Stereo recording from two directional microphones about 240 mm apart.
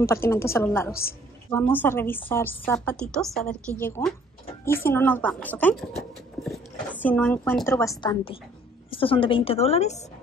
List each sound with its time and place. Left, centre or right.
0.1 s a woman's voice: centre; by 10.0 s left